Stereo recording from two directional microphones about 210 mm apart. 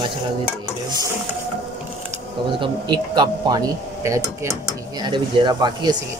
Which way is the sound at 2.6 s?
20° right (ahead or behind).